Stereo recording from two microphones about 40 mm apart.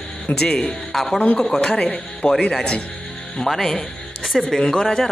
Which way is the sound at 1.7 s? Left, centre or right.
Left.